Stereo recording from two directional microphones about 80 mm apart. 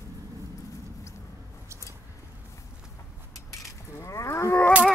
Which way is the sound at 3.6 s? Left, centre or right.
Left.